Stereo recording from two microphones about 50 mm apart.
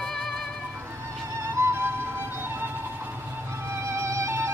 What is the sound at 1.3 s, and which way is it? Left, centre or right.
Music, right.